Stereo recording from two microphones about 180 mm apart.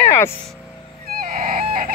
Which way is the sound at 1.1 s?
50° right (ahead or behind).